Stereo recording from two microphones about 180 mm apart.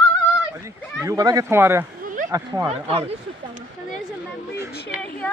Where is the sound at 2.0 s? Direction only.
45° right (ahead or behind).